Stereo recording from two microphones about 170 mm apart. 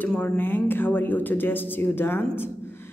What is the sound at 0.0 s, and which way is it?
A woman's voice, 10° left (ahead or behind).